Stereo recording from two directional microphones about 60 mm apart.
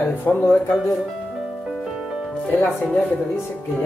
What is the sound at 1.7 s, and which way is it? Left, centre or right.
Music, centre.